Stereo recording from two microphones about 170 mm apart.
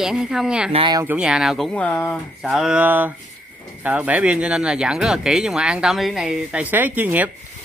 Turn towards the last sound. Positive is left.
turn(degrees=-10)  # may be behind; listen again after turning